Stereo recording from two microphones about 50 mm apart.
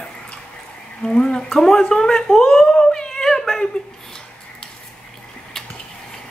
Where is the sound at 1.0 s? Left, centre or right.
Centre.